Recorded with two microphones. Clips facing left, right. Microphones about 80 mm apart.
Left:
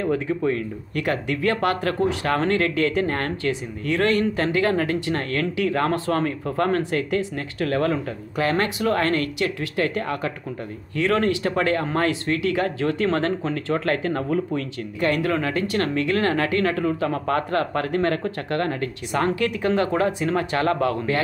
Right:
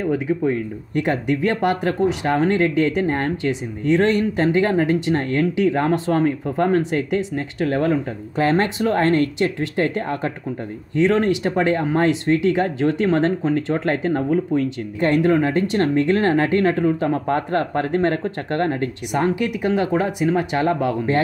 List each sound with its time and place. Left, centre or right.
0.0 s speech: centre
19.2 s speech: centre